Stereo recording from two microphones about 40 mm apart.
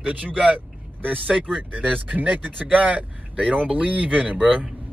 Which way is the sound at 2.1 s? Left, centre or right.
Right.